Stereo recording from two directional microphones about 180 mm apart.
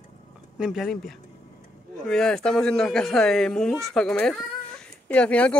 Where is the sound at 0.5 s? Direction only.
5° right (ahead or behind).